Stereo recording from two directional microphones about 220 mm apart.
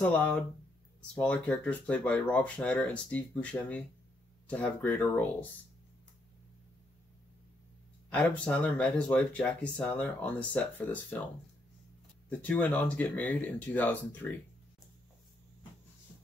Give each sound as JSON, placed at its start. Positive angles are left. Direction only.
{"t": 0.0, "sound": "speech", "side_deg": 5}
{"t": 8.1, "sound": "speech", "side_deg": 5}
{"t": 12.3, "sound": "speech", "side_deg": 5}